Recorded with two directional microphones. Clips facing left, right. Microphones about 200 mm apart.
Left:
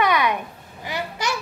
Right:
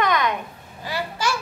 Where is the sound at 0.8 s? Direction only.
20° left (ahead or behind).